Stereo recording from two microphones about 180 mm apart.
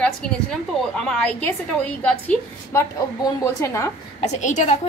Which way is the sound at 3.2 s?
20° left (ahead or behind).